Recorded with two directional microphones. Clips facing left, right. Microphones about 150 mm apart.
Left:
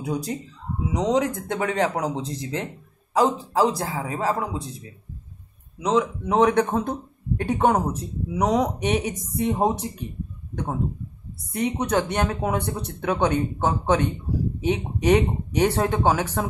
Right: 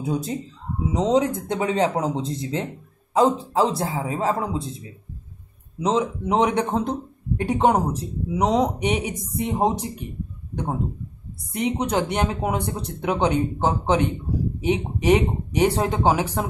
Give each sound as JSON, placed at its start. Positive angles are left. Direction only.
{"t": 0.0, "sound": "speech", "side_deg": -25}
{"t": 3.2, "sound": "speech", "side_deg": -25}
{"t": 5.8, "sound": "speech", "side_deg": -20}